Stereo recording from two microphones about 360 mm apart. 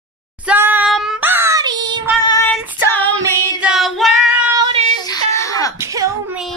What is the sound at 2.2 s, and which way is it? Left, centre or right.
Child singing, centre.